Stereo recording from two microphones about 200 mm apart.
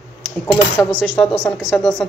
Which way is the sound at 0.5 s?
5° left (ahead or behind).